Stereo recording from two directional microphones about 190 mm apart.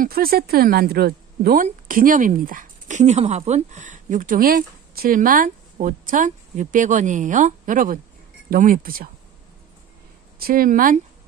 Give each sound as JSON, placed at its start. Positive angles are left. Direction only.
{"t": 0.0, "sound": "a woman's voice", "side_deg": -50}
{"t": 10.4, "sound": "a woman's voice", "side_deg": -50}